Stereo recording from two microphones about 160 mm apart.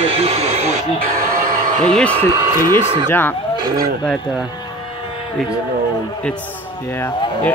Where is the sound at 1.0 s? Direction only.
60° right (ahead or behind).